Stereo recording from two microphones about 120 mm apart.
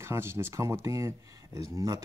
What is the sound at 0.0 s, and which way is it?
Speech, 20° right (ahead or behind).